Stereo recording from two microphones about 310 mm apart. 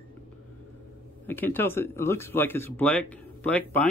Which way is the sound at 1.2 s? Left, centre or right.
Centre.